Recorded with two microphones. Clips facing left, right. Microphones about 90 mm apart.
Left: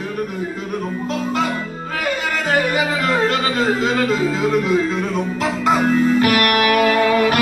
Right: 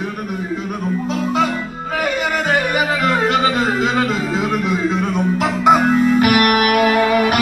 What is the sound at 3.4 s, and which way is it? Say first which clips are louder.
Music: right 2 dB; 15° right (ahead or behind).